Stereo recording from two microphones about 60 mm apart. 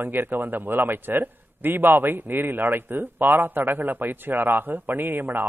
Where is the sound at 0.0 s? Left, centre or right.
Right.